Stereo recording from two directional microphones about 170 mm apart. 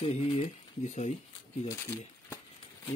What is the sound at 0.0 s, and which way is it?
Speech, 35° left (ahead or behind).